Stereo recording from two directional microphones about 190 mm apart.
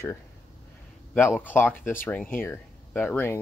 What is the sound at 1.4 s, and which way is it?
Speech, 10° left (ahead or behind).